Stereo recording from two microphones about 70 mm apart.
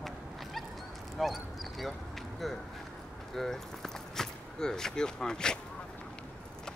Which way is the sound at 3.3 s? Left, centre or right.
Centre.